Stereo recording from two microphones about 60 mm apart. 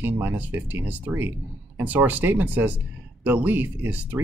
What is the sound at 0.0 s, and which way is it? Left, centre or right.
Speech, right.